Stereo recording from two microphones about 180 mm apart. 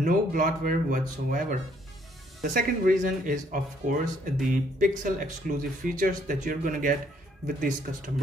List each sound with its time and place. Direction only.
0.0 s speech: 45° right (ahead or behind)